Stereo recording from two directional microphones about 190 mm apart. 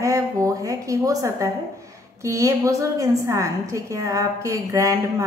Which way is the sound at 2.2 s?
15° right (ahead or behind).